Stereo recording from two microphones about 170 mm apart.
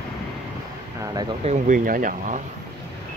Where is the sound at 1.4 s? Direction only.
45° right (ahead or behind).